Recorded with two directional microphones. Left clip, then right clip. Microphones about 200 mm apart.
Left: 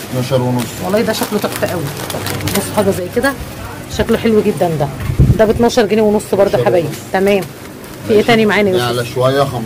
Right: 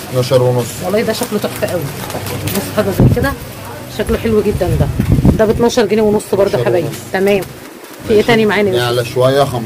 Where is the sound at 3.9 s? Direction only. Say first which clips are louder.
Left 2 dB; 20° left (ahead or behind).